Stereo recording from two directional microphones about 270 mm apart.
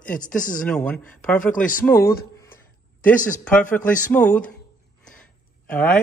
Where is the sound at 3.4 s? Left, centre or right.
Centre.